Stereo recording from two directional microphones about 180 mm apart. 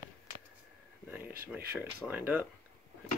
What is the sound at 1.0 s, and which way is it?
Speech, 10° right (ahead or behind).